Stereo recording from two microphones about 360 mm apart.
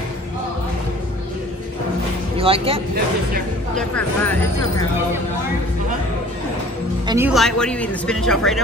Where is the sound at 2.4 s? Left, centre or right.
Centre.